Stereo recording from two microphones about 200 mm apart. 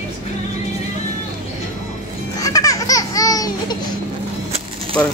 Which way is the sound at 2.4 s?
15° left (ahead or behind).